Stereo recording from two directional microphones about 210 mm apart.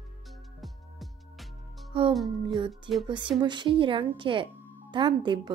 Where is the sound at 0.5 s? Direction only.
Centre (ahead or behind).